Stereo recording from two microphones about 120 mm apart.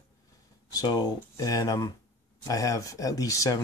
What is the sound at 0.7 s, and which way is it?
Speech, 35° left (ahead or behind).